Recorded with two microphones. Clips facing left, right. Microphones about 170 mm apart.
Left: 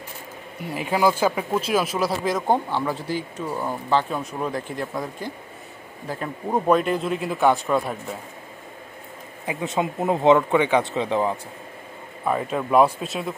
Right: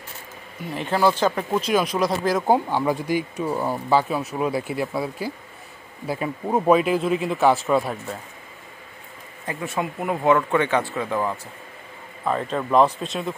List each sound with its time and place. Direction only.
0.6 s speech: 10° left (ahead or behind)
9.5 s speech: 20° left (ahead or behind)
12.3 s speech: 10° left (ahead or behind)